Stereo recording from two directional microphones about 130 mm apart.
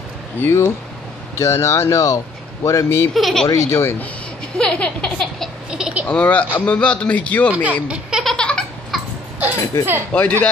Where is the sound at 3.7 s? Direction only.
20° left (ahead or behind).